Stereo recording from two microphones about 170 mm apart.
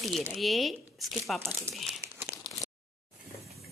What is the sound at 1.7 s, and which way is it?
Speech, 15° right (ahead or behind).